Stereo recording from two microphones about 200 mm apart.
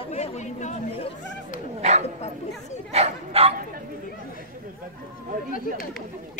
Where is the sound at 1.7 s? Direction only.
35° right (ahead or behind).